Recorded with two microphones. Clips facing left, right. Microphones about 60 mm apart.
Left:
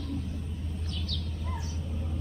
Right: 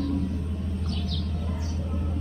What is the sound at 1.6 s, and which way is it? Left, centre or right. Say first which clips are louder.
Vehicle: right 6 dB; right.